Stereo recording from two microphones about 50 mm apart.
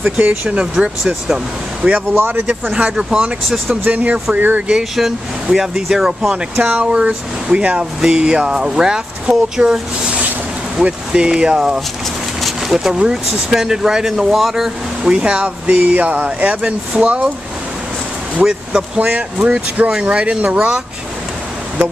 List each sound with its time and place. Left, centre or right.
0.5 s speech: centre
2.1 s speech: right
2.8 s speech: centre
4.6 s speech: centre
6.6 s speech: right
6.9 s speech: centre
10.8 s speech: right; by 14.7 s centre
15.0 s speech: centre
15.7 s speech: right
18.4 s speech: centre